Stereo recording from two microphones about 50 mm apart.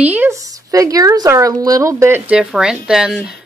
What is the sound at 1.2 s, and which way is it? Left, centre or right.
Speech, right.